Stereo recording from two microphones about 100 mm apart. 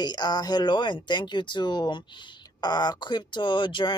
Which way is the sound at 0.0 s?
45° left (ahead or behind).